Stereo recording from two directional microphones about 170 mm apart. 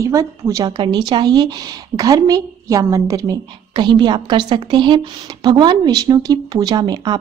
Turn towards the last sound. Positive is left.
turn(degrees=-25)  # may be behind; listen again after turning